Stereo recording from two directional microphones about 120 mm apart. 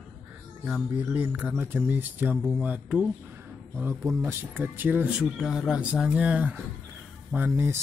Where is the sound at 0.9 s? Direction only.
15° right (ahead or behind).